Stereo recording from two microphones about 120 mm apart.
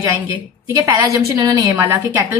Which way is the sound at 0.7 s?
25° right (ahead or behind).